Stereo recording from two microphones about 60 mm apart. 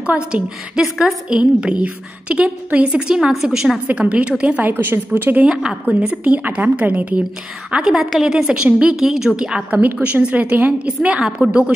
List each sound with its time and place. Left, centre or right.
0.0 s a woman's voice: right
5.4 s a woman's voice: centre
7.8 s a woman's voice: centre
9.7 s a woman's voice: right